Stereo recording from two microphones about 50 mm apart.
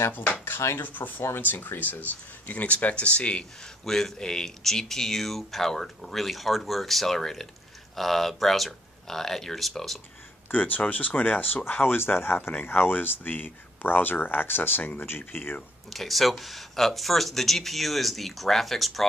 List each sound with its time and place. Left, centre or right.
0.1 s speech: left
0.6 s speech: left
0.8 s speech: left
3.8 s speech: centre
10.5 s speech: left
15.9 s speech: centre